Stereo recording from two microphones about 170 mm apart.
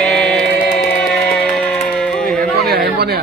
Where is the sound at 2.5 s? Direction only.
65° right (ahead or behind).